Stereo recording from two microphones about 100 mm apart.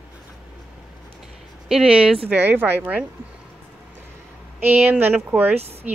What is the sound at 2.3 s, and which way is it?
Speech, 20° right (ahead or behind).